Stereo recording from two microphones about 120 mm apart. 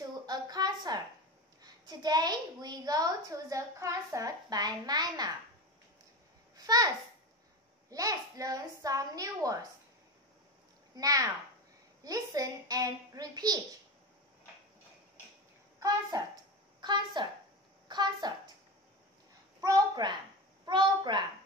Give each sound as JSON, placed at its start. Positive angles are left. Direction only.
{"t": 0.3, "sound": "a sound", "side_deg": -35}
{"t": 1.6, "sound": "a child's voice", "side_deg": -35}
{"t": 6.5, "sound": "babbling", "side_deg": -30}
{"t": 7.9, "sound": "a child's voice", "side_deg": -30}
{"t": 11.0, "sound": "a child's voice", "side_deg": -30}
{"t": 15.8, "sound": "a child's voice", "side_deg": -30}
{"t": 19.6, "sound": "a child's voice", "side_deg": -30}